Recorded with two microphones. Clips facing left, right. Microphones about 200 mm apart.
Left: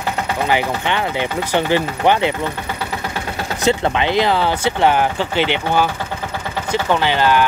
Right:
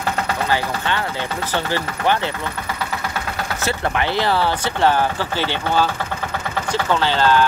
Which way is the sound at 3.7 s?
20° left (ahead or behind).